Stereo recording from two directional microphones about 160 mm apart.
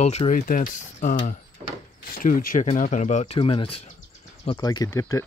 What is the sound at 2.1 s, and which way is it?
Speech, 60° left (ahead or behind).